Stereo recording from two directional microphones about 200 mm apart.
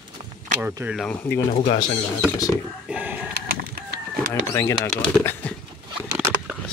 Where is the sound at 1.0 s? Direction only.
5° left (ahead or behind).